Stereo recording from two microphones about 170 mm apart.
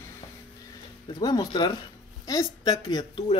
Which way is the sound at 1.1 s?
25° left (ahead or behind).